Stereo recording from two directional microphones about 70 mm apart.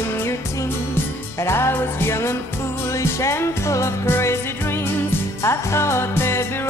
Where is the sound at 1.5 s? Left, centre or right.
Left.